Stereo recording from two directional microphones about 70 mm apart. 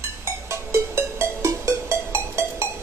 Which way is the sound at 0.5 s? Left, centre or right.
Right.